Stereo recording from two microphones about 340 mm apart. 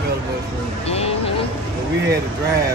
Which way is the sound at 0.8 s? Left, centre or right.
Centre.